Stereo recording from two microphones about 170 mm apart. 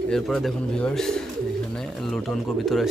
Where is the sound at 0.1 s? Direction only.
5° left (ahead or behind).